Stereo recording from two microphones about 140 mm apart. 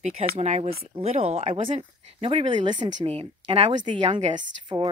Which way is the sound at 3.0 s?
45° right (ahead or behind).